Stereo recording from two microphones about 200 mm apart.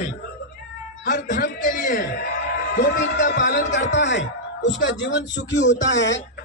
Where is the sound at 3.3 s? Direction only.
60° left (ahead or behind).